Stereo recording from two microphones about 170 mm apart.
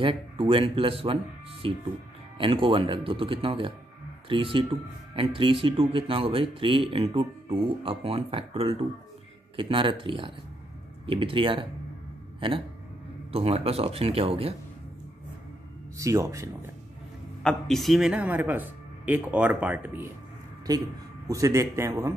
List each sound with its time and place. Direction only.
0.0 s speech: 30° right (ahead or behind)
16.0 s speech: 15° right (ahead or behind)
17.4 s speech: 5° left (ahead or behind)
21.3 s speech: 20° right (ahead or behind)